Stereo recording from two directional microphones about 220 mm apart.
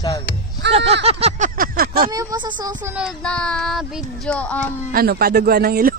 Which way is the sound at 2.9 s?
5° right (ahead or behind).